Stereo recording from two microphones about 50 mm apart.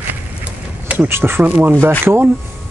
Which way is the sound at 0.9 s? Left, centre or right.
Right.